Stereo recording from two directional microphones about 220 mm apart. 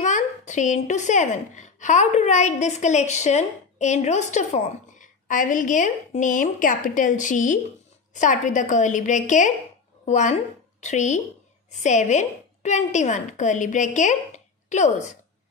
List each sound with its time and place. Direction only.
0.0 s a woman's voice: 35° left (ahead or behind)